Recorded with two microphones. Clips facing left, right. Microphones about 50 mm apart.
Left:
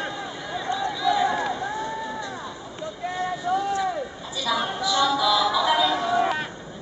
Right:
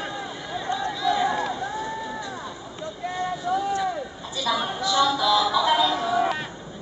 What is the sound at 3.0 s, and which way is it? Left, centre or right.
Boat, centre.